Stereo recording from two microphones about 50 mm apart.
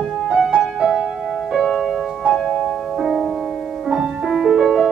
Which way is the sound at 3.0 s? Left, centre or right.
Centre.